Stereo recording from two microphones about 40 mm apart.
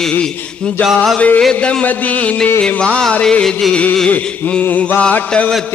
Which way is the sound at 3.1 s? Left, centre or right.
Left.